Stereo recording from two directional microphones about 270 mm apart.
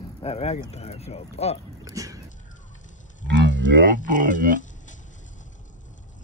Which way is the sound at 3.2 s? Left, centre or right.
Right.